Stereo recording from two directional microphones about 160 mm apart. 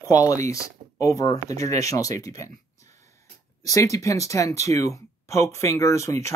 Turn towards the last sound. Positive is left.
turn(degrees=20)  # may be behind; listen again after turning